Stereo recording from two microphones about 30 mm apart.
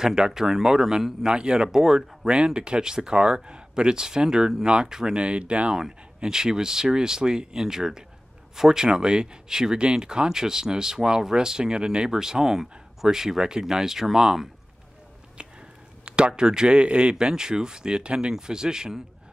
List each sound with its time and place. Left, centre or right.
0.0 s speech: centre
1.6 s speech: centre
2.2 s speech: right
5.2 s speech: right
5.7 s speech: centre
8.8 s speech: right
12.1 s speech: centre
15.4 s a sound: right
16.1 s speech: right